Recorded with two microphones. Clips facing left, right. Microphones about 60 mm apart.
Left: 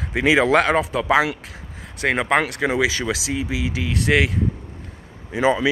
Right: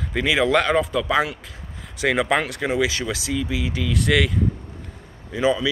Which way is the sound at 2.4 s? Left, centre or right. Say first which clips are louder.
Left 4 dB; left.